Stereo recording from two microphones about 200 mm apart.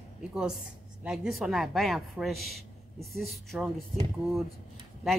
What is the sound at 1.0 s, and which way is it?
A man's voice, 5° right (ahead or behind).